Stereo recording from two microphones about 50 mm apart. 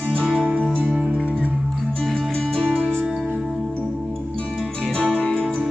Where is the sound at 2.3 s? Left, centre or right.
Centre.